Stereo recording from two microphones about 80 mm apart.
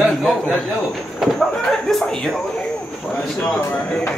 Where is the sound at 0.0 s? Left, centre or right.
Centre.